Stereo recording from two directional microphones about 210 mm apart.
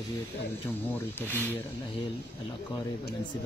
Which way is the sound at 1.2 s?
10° left (ahead or behind).